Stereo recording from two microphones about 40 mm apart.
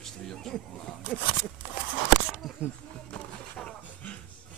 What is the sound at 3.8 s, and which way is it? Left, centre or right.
Music, left.